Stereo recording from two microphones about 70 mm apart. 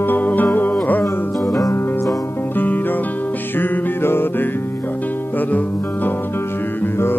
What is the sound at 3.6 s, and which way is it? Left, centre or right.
Music, left.